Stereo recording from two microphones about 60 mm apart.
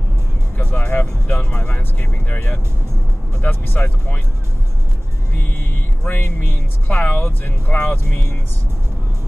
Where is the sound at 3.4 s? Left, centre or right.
Left.